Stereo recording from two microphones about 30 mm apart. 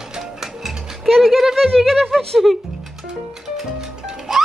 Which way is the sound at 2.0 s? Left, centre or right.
Centre.